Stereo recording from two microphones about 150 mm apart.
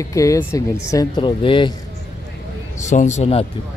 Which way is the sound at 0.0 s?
20° left (ahead or behind).